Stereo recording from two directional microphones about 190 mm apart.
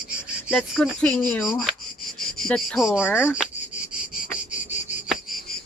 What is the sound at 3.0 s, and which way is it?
Speech, 10° left (ahead or behind).